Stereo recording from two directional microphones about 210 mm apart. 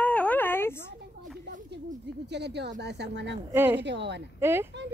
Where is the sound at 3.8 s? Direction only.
55° right (ahead or behind).